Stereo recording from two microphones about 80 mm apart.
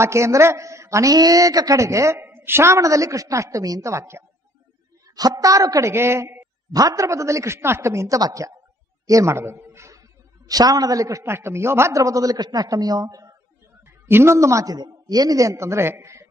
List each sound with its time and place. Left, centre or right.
0.0 s a woman's voice: right
1.1 s a man's voice: right
5.1 s a man's voice: right
6.7 s a woman's voice: right
9.0 s a sound: right
10.5 s a man's voice: right
13.8 s a man's voice: right